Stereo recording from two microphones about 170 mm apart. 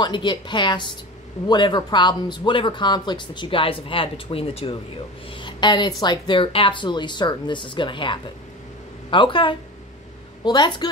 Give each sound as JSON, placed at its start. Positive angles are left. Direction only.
{"t": 0.0, "sound": "speech", "side_deg": 25}